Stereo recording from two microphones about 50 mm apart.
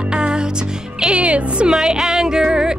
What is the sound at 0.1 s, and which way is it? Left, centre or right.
Music, centre.